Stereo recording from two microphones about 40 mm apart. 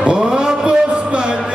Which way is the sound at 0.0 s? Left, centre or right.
Right.